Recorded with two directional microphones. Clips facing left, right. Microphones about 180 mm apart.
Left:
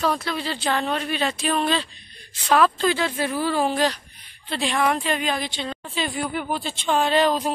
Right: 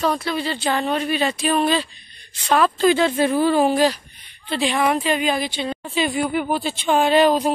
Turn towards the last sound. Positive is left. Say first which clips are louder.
# right 4 dB
turn(degrees=-10)  # may be behind; listen again after turning